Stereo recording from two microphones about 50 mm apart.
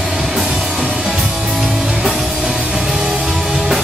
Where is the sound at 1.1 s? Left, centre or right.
Centre.